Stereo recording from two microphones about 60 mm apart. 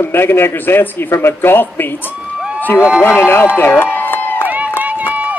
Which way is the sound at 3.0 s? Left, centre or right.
Left.